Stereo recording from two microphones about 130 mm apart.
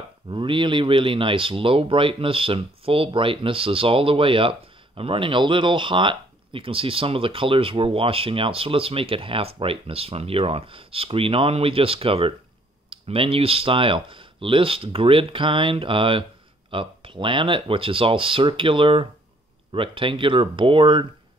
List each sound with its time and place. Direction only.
0.3 s speech: 40° right (ahead or behind)